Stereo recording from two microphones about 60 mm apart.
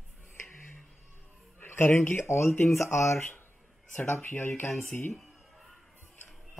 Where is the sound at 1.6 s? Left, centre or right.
Left.